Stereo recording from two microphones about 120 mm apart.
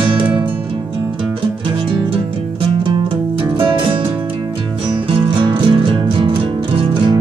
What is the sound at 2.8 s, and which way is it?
Music, 45° right (ahead or behind).